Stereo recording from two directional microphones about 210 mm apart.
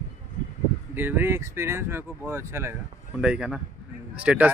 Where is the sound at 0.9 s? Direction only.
10° right (ahead or behind).